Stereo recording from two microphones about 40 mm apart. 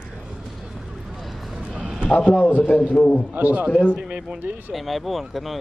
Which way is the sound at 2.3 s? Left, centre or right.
Left.